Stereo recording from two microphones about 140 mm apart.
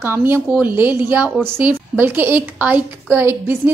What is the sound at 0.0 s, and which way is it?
A woman's voice, 15° right (ahead or behind).